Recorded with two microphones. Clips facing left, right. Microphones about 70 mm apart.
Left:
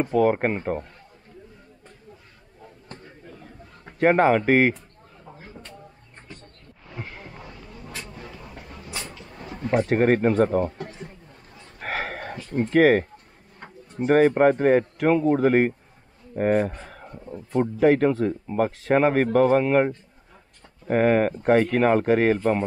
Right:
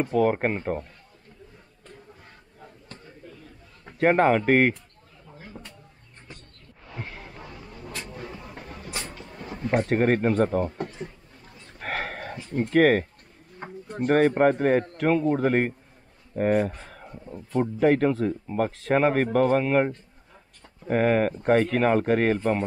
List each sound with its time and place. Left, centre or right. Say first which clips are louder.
0.0 s speech: left 2 dB; centre
4.0 s speech: left 2 dB; centre
7.0 s a sound: left 1 dB; centre
7.5 s vehicle: right 1 dB; centre
8.0 s vehicle: right 2 dB; right
9.8 s speech: left 3 dB; centre
11.8 s a sound: left 2 dB; centre
12.6 s speech: left 2 dB; centre
13.6 s a sound: right 5 dB; centre
14.0 s speech: left 2 dB; centre